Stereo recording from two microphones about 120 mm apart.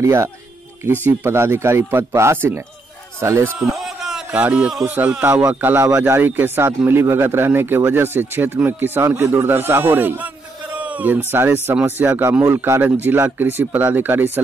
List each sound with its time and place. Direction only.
0.0 s speech: 25° right (ahead or behind)
3.5 s a man's voice: centre (ahead or behind)
12.1 s speech: 25° right (ahead or behind)